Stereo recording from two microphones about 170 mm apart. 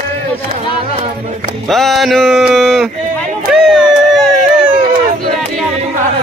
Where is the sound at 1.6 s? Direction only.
Centre (ahead or behind).